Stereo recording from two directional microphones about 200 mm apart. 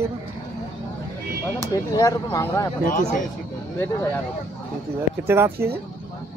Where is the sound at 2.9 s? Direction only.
35° left (ahead or behind).